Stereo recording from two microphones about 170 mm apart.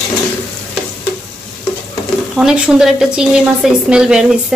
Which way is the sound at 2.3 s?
5° right (ahead or behind).